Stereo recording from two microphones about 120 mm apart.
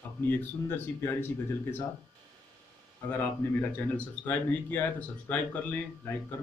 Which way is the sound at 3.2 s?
15° left (ahead or behind).